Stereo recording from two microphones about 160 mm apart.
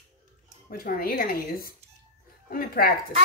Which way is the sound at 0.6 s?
65° left (ahead or behind).